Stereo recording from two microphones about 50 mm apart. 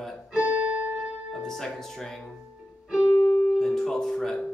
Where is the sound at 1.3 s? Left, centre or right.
Centre.